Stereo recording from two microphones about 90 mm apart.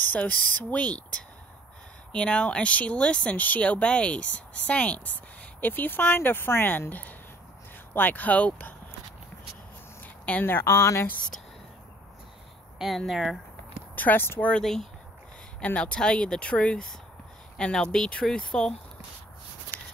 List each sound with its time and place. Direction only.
0.0 s speech: 20° left (ahead or behind)
10.2 s speech: 20° left (ahead or behind)
12.7 s speech: centre (ahead or behind)
13.9 s speech: 20° left (ahead or behind)
14.5 s speech: 5° left (ahead or behind)